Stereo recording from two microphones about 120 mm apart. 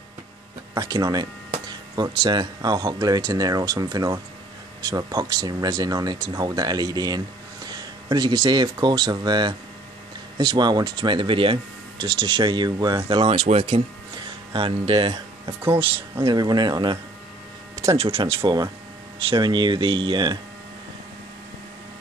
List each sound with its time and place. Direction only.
0.7 s speech: 35° right (ahead or behind); by 16.3 s 50° right (ahead or behind)
16.3 s speech: 35° right (ahead or behind)
17.9 s speech: 55° right (ahead or behind)